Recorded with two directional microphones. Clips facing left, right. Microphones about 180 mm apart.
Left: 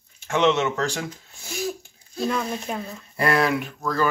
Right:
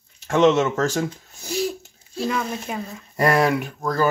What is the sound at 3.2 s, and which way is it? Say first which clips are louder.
Speech: right 3 dB; 45° right (ahead or behind).